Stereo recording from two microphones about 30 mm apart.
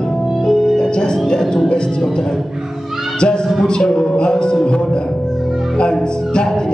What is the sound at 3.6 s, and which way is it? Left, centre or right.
Speech, left.